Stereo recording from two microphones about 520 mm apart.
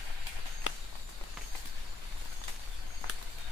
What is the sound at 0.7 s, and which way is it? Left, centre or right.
Walk, left.